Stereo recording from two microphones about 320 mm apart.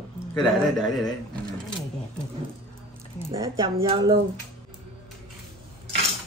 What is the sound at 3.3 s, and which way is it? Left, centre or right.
Speech, centre.